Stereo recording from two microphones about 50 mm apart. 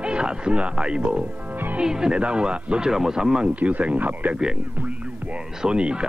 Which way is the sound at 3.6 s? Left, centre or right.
Right.